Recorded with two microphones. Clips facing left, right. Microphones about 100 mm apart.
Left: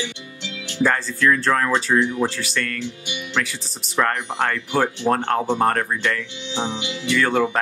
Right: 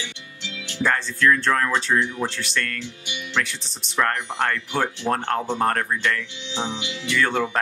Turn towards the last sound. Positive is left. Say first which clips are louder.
# left 3 dB
turn(degrees=0)  # may be behind; listen again after turning